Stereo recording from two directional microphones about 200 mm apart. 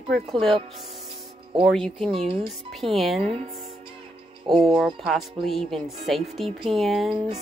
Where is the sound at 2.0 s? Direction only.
25° right (ahead or behind).